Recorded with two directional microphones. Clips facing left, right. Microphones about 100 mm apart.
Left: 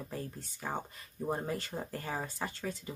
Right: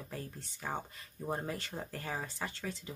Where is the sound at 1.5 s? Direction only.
40° left (ahead or behind).